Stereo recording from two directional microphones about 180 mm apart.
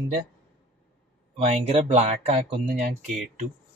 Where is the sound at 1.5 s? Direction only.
35° right (ahead or behind).